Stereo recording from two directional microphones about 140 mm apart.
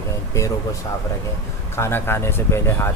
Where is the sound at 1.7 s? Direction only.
15° left (ahead or behind).